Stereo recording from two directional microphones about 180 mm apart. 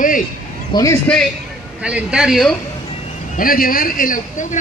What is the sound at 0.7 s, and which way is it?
Speech, 20° left (ahead or behind).